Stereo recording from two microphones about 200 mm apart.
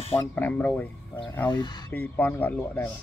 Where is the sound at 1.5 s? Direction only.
20° left (ahead or behind).